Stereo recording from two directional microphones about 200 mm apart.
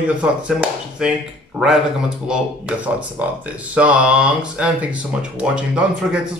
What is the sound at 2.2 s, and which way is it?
Speech, 5° right (ahead or behind).